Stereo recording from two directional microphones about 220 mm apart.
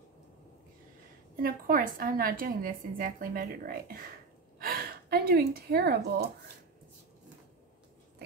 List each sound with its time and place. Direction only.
1.3 s a woman's voice: 40° right (ahead or behind)